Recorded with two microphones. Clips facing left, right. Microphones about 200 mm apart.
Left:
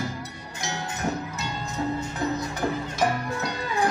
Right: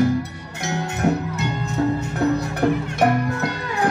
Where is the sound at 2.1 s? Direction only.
65° right (ahead or behind).